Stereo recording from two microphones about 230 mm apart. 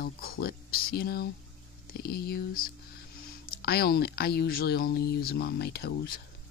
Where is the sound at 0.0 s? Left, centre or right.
Left.